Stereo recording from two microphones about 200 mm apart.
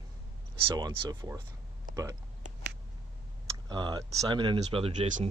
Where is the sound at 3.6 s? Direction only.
20° right (ahead or behind).